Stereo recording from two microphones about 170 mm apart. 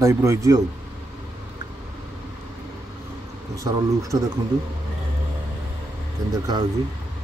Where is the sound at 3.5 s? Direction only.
20° right (ahead or behind).